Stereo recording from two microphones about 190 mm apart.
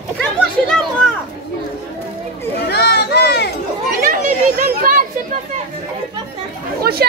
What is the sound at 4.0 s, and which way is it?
Chatter, 45° right (ahead or behind).